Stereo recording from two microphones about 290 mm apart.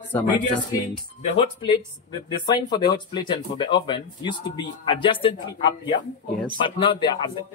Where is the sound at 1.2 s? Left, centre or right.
Centre.